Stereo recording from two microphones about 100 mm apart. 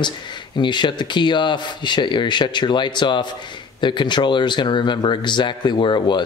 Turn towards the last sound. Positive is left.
turn(degrees=55)  # may be behind; listen again after turning